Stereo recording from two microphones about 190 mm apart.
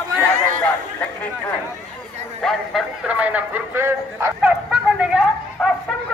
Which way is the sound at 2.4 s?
5° right (ahead or behind).